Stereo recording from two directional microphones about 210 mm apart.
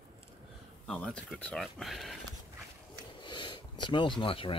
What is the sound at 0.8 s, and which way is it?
Speech, 5° left (ahead or behind).